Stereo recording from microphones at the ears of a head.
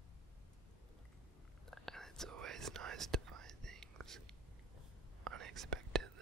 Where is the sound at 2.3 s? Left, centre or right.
Right.